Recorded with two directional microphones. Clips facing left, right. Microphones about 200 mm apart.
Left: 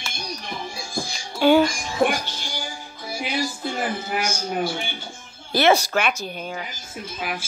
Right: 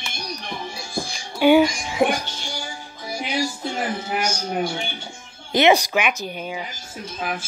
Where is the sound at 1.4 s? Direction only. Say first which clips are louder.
Right 2 dB; 15° right (ahead or behind).